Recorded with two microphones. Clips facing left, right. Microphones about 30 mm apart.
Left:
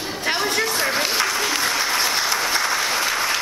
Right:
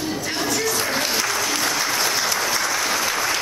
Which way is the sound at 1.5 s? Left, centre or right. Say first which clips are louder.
Left 1 dB; centre.